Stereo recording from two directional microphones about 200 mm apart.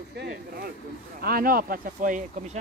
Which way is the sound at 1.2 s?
45° right (ahead or behind).